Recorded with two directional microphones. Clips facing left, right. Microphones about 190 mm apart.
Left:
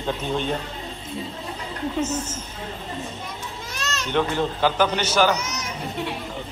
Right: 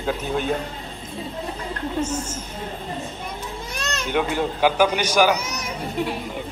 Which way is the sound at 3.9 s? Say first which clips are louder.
Even; 10° right (ahead or behind).